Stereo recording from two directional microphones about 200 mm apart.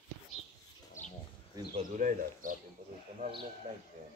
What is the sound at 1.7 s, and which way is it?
Bird, 40° right (ahead or behind).